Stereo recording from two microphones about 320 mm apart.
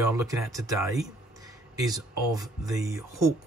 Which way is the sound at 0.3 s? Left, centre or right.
Centre.